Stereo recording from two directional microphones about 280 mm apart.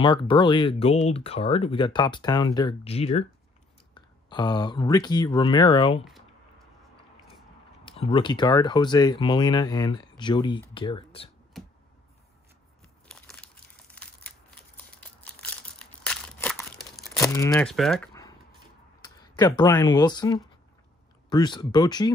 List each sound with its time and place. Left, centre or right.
0.0 s speech: centre
7.8 s speech: centre
13.1 s crumpling: centre
14.5 s a sound: centre
17.2 s speech: centre
19.0 s speech: centre